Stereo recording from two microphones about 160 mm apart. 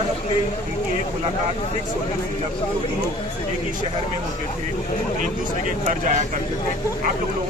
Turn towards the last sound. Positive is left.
turn(degrees=-50)  # may be behind; listen again after turning